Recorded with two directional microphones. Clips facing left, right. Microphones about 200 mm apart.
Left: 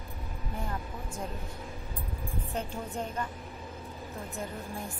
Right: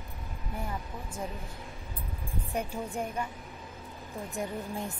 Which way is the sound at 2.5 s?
10° right (ahead or behind).